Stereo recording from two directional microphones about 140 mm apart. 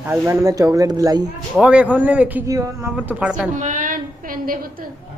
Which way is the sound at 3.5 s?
65° right (ahead or behind).